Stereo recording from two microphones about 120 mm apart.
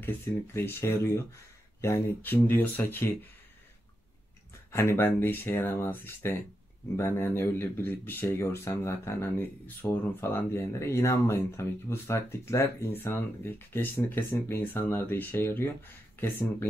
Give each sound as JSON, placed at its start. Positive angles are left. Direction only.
{"t": 0.0, "sound": "speech", "side_deg": 20}
{"t": 4.7, "sound": "speech", "side_deg": 20}